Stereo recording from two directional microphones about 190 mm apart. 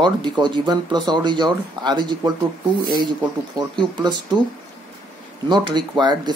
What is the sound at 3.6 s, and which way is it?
Speech, 25° right (ahead or behind).